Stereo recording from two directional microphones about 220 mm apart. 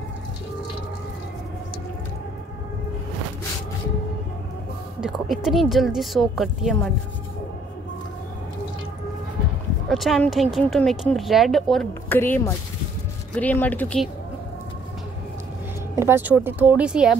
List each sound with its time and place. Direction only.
5.0 s speech: centre (ahead or behind)
9.8 s speech: centre (ahead or behind)
16.0 s speech: 10° right (ahead or behind)